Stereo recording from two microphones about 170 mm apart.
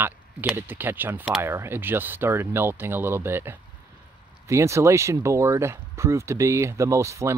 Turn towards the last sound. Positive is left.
turn(degrees=-15)  # may be behind; listen again after turning